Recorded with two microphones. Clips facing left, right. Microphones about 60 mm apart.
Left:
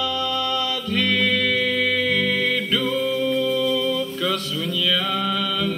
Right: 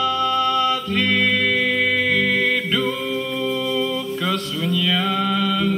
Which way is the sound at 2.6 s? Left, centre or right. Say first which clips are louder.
Even; centre.